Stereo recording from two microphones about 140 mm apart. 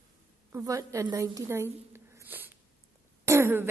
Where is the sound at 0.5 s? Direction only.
25° right (ahead or behind).